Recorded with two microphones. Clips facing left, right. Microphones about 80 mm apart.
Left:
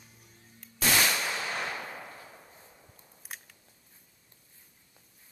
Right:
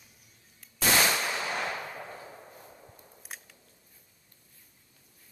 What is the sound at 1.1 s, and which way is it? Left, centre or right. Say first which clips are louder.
Machine gun: right 2 dB; centre.